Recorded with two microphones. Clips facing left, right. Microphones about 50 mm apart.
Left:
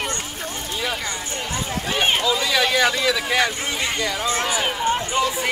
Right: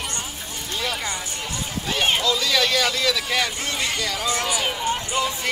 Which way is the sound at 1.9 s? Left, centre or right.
Centre.